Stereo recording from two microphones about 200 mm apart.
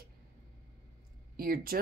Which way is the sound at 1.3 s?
45° right (ahead or behind).